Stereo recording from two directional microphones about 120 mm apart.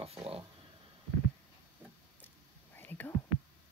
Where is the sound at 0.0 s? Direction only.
55° right (ahead or behind).